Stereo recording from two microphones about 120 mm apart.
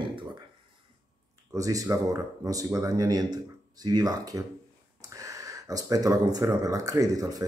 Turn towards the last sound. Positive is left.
turn(degrees=-30)  # may be behind; listen again after turning